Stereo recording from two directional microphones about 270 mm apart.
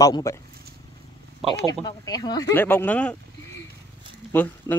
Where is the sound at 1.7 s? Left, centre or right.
Centre.